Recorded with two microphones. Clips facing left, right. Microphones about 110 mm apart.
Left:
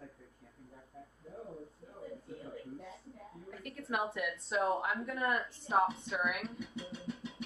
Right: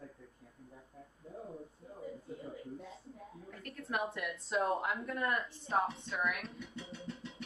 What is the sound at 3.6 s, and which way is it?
A woman's voice, centre (ahead or behind).